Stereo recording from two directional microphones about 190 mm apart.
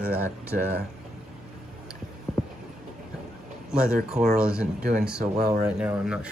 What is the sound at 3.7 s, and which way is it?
Speech, 5° right (ahead or behind).